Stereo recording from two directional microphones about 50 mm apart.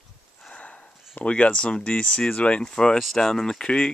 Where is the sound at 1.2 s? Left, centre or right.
Left.